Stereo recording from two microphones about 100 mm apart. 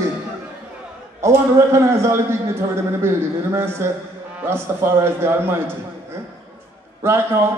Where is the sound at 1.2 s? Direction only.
25° right (ahead or behind).